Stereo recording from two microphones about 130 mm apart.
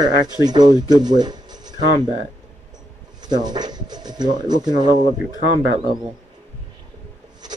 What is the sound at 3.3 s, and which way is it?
Speech, 30° right (ahead or behind).